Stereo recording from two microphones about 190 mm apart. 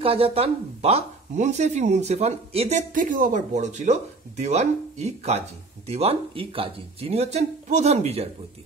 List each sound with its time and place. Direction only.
0.0 s speech: 30° right (ahead or behind)